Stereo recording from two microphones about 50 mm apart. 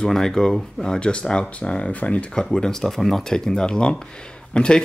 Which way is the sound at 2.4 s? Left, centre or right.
Centre.